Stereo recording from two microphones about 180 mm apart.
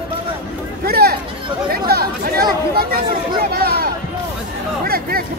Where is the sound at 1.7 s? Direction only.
55° right (ahead or behind).